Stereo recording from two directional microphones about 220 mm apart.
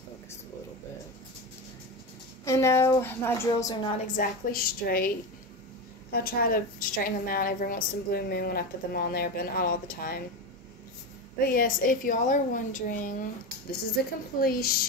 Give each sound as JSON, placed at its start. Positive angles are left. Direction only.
{"t": 2.4, "sound": "a woman's voice", "side_deg": 15}
{"t": 4.2, "sound": "a woman's voice", "side_deg": 40}
{"t": 6.1, "sound": "a woman's voice", "side_deg": 40}
{"t": 11.3, "sound": "a woman's voice", "side_deg": 40}